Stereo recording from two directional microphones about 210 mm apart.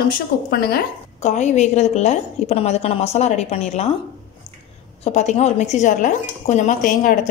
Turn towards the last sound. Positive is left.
turn(degrees=40)  # may be behind; listen again after turning